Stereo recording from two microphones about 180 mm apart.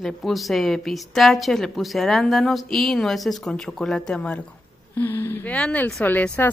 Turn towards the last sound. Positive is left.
turn(degrees=10)  # may be behind; listen again after turning